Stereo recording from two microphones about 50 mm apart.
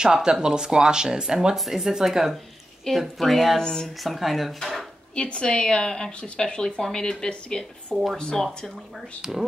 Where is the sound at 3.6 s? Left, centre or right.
Centre.